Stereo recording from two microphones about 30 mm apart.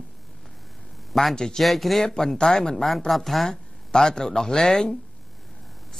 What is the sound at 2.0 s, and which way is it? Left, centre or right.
Speech, left.